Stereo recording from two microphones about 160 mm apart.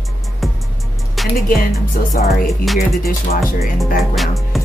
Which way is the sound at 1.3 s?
60° left (ahead or behind).